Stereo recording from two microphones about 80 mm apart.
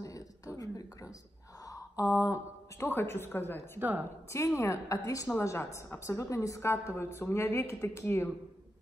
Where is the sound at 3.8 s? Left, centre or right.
Right.